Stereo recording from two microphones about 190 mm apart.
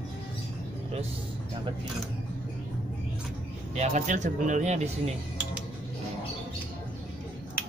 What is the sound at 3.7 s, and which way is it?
Speech, 35° right (ahead or behind).